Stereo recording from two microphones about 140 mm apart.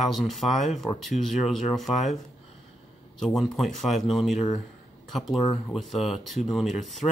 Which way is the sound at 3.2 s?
Centre (ahead or behind).